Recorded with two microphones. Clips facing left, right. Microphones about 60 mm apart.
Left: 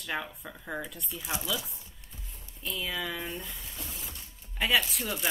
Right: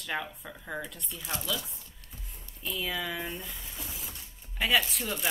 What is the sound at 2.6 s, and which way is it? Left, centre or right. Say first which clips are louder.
Speech: right 1 dB; centre.